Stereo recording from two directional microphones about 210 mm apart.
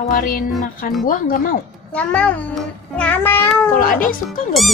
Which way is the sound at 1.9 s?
5° left (ahead or behind).